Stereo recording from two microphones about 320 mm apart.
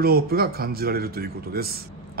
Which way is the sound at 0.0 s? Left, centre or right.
Right.